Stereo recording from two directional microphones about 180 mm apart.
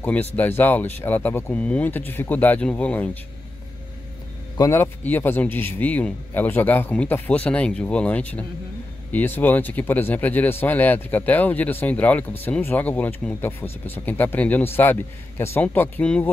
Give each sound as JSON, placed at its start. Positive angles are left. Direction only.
{"t": 0.0, "sound": "speech", "side_deg": 10}
{"t": 4.6, "sound": "speech", "side_deg": 15}